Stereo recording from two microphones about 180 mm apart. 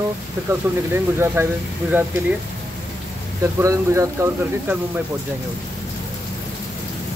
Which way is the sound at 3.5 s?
15° right (ahead or behind).